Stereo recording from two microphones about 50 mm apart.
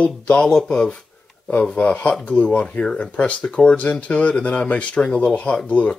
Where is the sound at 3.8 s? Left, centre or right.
Left.